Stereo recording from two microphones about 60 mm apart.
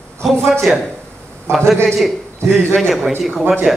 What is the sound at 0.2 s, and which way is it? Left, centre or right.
Speech, centre.